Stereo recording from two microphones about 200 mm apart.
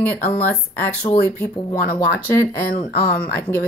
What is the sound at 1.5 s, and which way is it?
Speech, 20° left (ahead or behind).